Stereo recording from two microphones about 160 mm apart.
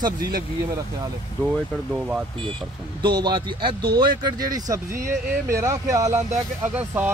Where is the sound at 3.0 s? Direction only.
30° right (ahead or behind).